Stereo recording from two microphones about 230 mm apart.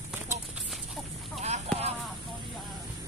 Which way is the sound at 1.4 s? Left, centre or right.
Right.